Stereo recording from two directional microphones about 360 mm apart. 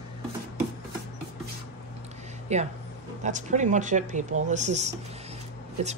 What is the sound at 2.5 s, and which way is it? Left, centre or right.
Speech, centre.